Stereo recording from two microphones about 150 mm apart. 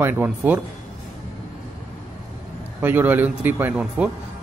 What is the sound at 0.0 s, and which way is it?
Speech, 10° right (ahead or behind).